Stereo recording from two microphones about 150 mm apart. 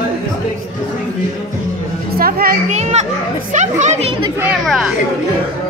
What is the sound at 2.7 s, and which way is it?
Children playing, 50° right (ahead or behind).